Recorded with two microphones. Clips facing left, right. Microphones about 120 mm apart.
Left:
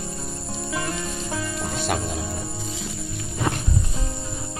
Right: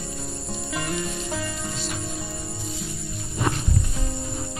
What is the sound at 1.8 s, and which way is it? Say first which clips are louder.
Cricket: left 6 dB; 70° left (ahead or behind).